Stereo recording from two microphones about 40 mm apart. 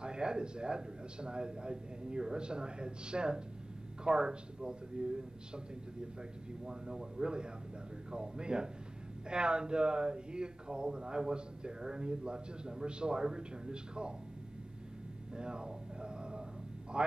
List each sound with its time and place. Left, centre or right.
0.0 s speech: right
6.6 s speech: centre
15.3 s a sound: right
16.9 s speech: right